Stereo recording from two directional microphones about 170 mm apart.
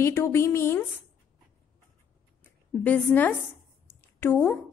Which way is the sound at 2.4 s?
10° left (ahead or behind).